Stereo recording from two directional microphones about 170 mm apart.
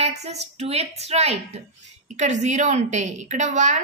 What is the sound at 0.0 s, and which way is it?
Speech, 40° right (ahead or behind).